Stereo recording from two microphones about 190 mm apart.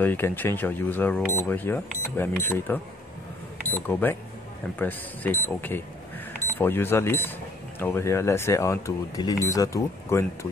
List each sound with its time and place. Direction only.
0.0 s speech: 10° left (ahead or behind)